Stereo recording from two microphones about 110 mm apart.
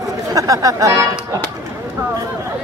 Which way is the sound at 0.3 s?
30° right (ahead or behind).